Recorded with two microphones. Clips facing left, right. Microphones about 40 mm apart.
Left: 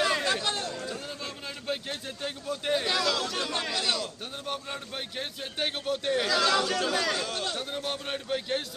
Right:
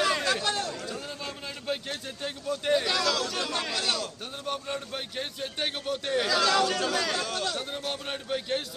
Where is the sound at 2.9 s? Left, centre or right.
Centre.